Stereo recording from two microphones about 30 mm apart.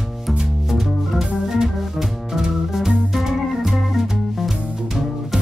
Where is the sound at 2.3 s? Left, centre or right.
Centre.